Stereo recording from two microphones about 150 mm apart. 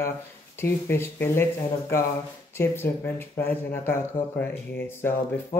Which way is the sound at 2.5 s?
15° left (ahead or behind).